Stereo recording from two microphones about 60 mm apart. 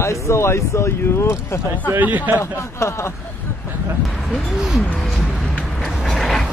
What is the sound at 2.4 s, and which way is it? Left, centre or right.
Speech, left.